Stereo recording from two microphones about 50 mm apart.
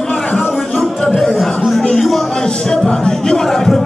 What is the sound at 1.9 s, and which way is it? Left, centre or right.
Speech, centre.